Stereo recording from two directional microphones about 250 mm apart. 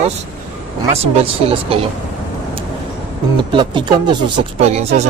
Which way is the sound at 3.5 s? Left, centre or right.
Centre.